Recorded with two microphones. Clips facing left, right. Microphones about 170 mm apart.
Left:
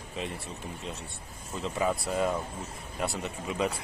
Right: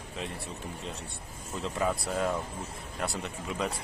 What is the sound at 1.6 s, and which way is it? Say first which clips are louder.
A man's voice: left 1 dB; centre (ahead or behind).